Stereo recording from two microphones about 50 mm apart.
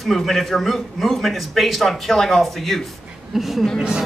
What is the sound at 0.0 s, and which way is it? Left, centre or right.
A man's voice, centre.